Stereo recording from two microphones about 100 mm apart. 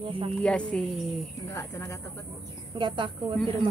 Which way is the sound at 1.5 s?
30° left (ahead or behind).